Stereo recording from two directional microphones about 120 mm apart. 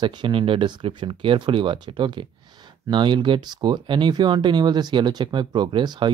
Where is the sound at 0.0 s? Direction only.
40° right (ahead or behind).